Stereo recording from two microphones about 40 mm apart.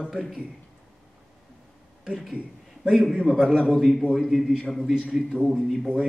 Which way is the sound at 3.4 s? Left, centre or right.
Centre.